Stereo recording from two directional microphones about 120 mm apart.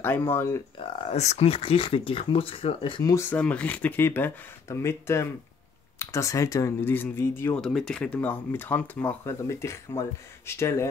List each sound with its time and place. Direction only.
0.0 s speech: 20° left (ahead or behind)
1.1 s speech: 65° left (ahead or behind); by 3.0 s 50° left (ahead or behind)
3.0 s speech: 30° left (ahead or behind)
3.3 s speech: 10° left (ahead or behind)
7.5 s speech: 5° left (ahead or behind); by 10.9 s 20° left (ahead or behind)